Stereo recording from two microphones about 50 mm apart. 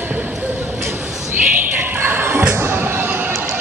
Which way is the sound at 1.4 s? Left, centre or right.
Right.